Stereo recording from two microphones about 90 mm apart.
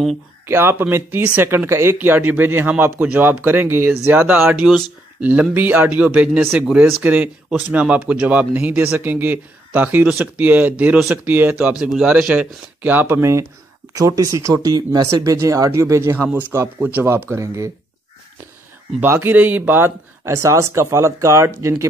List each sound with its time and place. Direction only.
0.5 s speech: 25° right (ahead or behind)
11.8 s speech: 5° right (ahead or behind); by 17.6 s 30° right (ahead or behind)
18.9 s speech: 25° right (ahead or behind)